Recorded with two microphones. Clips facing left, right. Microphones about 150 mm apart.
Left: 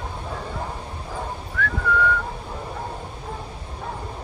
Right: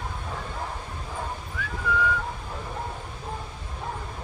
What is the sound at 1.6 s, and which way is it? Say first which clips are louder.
Whistling: left 12 dB; 15° right (ahead or behind).